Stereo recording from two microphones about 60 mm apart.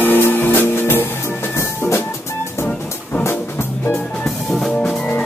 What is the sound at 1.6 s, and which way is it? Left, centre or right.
Music, left.